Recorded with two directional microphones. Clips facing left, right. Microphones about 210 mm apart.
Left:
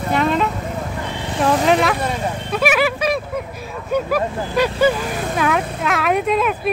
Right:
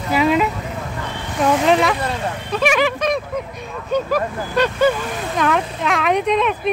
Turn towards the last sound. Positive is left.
turn(degrees=5)  # may be behind; listen again after turning